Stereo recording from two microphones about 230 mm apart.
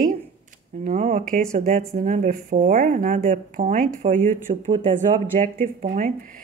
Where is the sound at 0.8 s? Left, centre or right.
Right.